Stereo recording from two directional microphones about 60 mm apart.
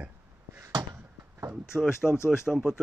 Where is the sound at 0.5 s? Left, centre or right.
Right.